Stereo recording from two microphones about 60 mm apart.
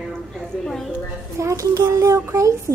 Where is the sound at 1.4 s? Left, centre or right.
Right.